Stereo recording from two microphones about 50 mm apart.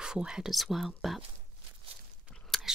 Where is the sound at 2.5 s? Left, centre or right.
Centre.